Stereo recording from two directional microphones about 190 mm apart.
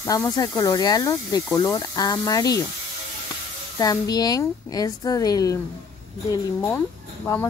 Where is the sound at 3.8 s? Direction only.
20° left (ahead or behind).